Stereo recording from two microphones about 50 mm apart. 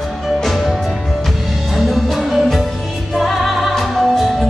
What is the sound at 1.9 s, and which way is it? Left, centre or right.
Music, centre.